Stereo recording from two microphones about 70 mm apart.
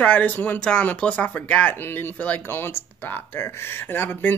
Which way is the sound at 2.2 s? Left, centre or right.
Left.